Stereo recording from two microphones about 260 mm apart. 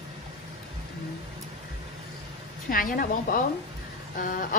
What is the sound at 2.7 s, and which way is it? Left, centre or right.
A woman's voice, left.